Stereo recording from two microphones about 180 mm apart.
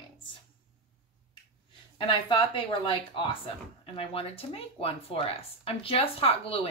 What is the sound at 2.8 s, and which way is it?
Speech, 30° left (ahead or behind).